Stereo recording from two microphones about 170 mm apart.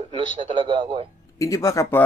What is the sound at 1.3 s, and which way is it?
Speech, 20° left (ahead or behind).